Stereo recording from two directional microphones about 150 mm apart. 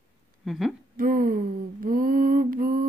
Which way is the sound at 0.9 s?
70° right (ahead or behind).